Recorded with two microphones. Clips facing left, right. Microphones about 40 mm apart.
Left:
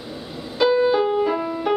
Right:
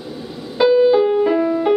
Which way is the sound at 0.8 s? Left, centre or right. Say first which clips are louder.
Right 5 dB; centre.